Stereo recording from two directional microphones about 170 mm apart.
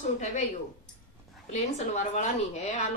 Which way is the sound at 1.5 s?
45° left (ahead or behind).